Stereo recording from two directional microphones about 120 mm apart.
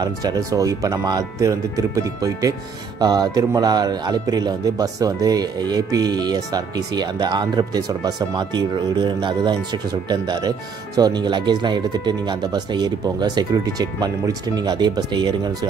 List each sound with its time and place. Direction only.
0.0 s speech: 30° right (ahead or behind)